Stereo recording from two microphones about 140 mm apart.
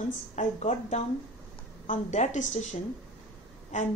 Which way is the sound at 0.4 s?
55° left (ahead or behind).